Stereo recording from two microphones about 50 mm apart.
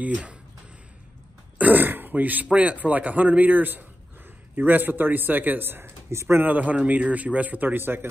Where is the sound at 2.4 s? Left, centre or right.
Right.